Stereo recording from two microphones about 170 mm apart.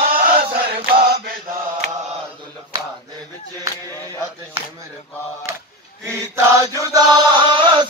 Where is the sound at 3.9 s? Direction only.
15° left (ahead or behind).